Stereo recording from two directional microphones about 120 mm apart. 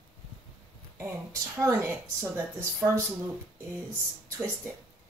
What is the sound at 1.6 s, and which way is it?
Speech, 25° right (ahead or behind).